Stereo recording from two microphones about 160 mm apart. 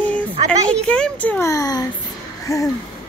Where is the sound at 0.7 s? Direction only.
5° left (ahead or behind); by 1.9 s 25° left (ahead or behind).